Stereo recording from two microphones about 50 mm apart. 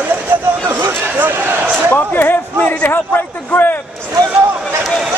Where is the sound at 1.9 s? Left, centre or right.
Left.